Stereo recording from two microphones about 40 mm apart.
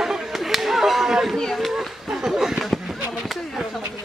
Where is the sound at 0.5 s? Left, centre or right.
Centre.